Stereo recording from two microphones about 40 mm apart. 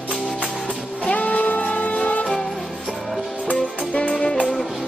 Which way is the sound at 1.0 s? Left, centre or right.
Left.